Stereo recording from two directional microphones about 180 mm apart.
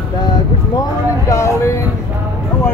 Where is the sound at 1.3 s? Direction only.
15° left (ahead or behind).